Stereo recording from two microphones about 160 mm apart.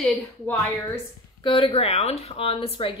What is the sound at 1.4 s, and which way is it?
Speech, 30° left (ahead or behind).